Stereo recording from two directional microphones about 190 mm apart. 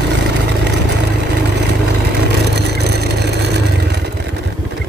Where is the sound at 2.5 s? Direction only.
60° right (ahead or behind).